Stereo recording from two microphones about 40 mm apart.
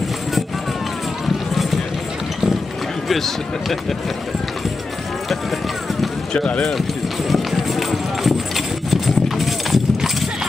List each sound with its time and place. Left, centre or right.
1.5 s clip-clop: centre
3.1 s speech: centre
6.3 s speech: left
7.9 s clip-clop: centre